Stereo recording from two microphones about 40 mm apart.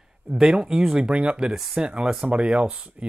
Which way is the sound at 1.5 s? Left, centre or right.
Centre.